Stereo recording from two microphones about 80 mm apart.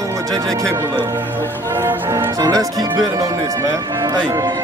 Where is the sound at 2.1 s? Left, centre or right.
Right.